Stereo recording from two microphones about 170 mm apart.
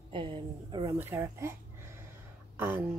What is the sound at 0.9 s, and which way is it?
Speech, 15° right (ahead or behind).